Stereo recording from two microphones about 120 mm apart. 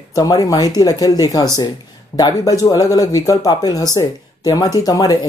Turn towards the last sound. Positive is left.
turn(degrees=30)  # may be behind; listen again after turning